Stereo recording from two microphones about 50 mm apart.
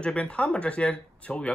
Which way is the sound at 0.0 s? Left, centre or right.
Left.